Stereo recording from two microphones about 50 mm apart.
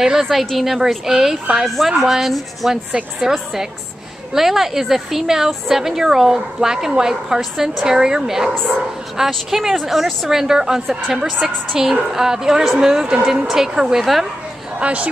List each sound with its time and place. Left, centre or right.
0.0 s a woman's voice: centre
14.8 s speech: right